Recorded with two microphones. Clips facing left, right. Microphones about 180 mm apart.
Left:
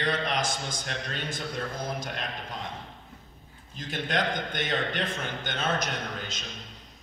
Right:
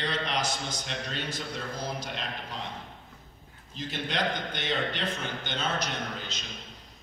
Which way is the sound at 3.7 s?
50° left (ahead or behind).